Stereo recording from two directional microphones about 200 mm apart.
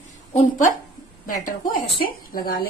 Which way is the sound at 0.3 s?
40° left (ahead or behind).